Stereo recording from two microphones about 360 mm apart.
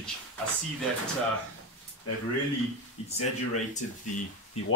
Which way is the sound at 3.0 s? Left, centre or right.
Centre.